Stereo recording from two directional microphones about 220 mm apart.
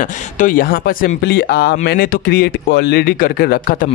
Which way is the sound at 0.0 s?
35° left (ahead or behind).